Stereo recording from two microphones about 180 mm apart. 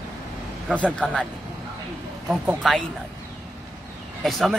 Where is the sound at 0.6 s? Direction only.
5° left (ahead or behind).